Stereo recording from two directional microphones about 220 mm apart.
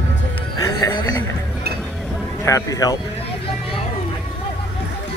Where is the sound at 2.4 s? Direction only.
15° left (ahead or behind).